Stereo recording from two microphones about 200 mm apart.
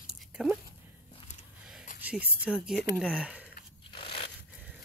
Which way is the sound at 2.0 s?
10° right (ahead or behind).